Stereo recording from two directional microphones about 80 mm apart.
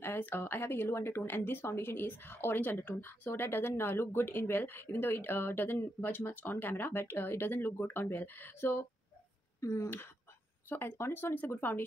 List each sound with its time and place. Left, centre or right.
0.0 s speech: left
9.6 s speech: left
9.8 s speech: left